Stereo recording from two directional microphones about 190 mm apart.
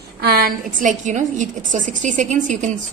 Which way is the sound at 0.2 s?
55° right (ahead or behind).